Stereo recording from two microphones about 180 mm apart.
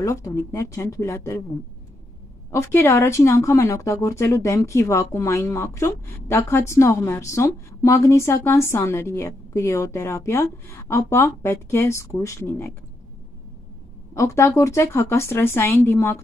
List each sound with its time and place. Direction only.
0.0 s a woman's voice: 15° left (ahead or behind)
2.5 s a woman's voice: 15° left (ahead or behind)
14.1 s a woman's voice: 15° left (ahead or behind)